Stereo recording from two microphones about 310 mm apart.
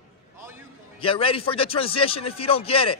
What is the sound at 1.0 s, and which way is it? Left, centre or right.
Speech, centre.